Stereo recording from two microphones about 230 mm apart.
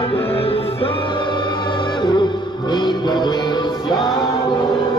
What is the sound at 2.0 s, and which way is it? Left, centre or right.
Music, centre.